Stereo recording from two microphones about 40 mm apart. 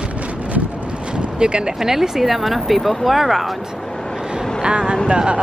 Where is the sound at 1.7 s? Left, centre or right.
Centre.